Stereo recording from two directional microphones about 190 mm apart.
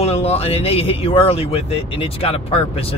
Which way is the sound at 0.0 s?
30° left (ahead or behind).